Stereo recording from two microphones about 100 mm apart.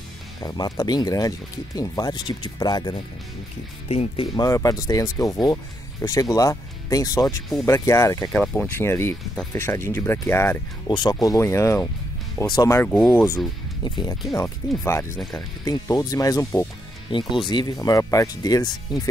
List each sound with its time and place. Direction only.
0.4 s speech: 40° left (ahead or behind)
3.9 s speech: 90° left
4.4 s speech: 35° left (ahead or behind)
8.3 s speech: 15° left (ahead or behind)
10.9 s speech: 45° left (ahead or behind)
11.2 s speech: 30° left (ahead or behind)
13.8 s speech: 45° left (ahead or behind)
14.6 s speech: 30° left (ahead or behind)
17.1 s speech: 55° left (ahead or behind)
17.7 s speech: 35° left (ahead or behind)